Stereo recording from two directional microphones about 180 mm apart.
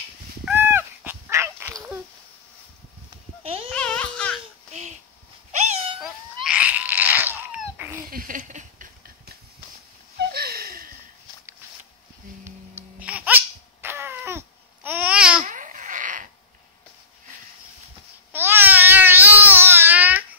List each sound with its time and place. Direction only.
0.5 s dog: 10° right (ahead or behind)
3.7 s a sound: 5° left (ahead or behind)
5.5 s cat: 40° right (ahead or behind)
5.9 s cat: 5° right (ahead or behind)
8.1 s a sound: 50° right (ahead or behind)
10.1 s a sound: 60° right (ahead or behind)
12.4 s sneeze: 10° right (ahead or behind)
15.4 s fart: 45° right (ahead or behind)
18.3 s babbling: 10° right (ahead or behind)